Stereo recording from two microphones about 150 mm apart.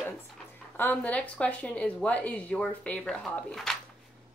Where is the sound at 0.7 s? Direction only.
10° left (ahead or behind).